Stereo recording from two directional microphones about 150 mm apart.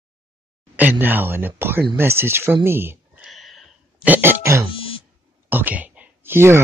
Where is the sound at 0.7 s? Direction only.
10° right (ahead or behind).